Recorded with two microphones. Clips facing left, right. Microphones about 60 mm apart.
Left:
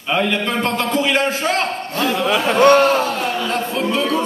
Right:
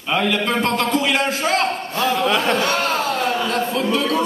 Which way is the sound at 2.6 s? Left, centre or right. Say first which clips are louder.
Left 8 dB; left.